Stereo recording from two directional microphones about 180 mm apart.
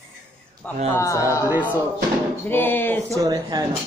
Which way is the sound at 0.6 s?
10° left (ahead or behind).